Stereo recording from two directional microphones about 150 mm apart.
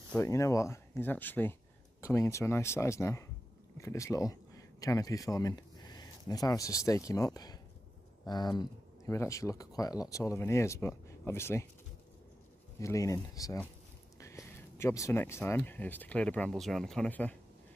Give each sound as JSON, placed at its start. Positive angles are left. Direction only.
{"t": 0.2, "sound": "speech", "side_deg": 20}
{"t": 12.8, "sound": "speech", "side_deg": 20}